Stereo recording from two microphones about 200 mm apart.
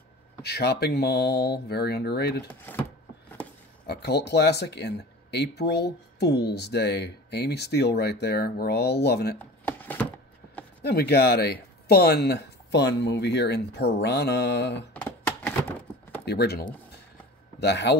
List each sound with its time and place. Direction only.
0.4 s speech: 55° left (ahead or behind)
2.7 s a sound: 10° left (ahead or behind)
3.8 s speech: 55° left (ahead or behind)
9.7 s chopping: 10° left (ahead or behind)
10.8 s speech: 55° left (ahead or behind)
15.0 s a sound: 10° left (ahead or behind)
16.3 s speech: 55° left (ahead or behind)